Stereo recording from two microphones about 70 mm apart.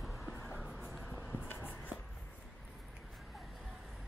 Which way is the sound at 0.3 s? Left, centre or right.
Left.